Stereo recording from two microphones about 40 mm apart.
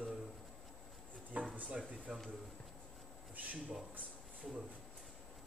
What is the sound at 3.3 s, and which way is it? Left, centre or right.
Speech, right.